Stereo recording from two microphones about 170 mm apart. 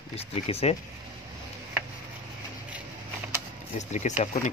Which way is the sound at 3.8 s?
45° left (ahead or behind).